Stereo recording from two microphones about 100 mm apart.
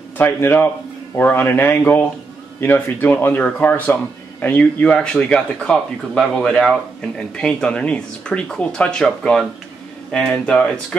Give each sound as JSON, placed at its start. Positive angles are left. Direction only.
{"t": 0.2, "sound": "speech", "side_deg": 20}